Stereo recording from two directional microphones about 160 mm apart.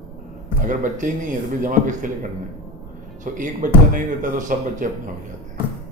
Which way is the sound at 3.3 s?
55° right (ahead or behind).